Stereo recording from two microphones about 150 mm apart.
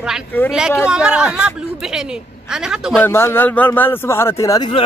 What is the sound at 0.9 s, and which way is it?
Speech, 5° right (ahead or behind).